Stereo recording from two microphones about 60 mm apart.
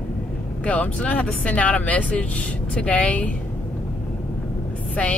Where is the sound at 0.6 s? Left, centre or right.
Left.